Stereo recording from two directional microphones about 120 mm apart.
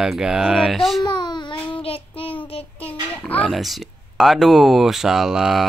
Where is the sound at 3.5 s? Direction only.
Centre (ahead or behind).